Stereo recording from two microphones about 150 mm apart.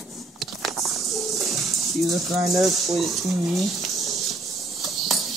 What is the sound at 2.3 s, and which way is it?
Speech, centre (ahead or behind).